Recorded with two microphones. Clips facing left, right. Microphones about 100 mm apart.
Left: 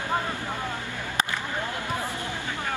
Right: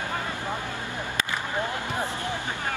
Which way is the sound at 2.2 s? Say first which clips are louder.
Right 2 dB; 20° right (ahead or behind).